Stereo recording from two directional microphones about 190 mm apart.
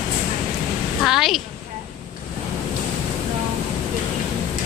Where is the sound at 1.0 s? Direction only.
Centre (ahead or behind).